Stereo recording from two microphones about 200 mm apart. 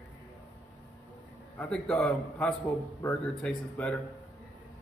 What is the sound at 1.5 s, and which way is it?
A man's voice, 5° left (ahead or behind).